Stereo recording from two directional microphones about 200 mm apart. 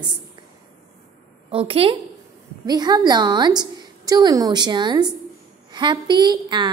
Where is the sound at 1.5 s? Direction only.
30° right (ahead or behind).